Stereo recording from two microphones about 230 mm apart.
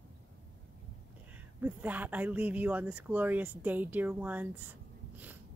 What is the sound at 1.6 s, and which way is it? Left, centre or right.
Speech, centre.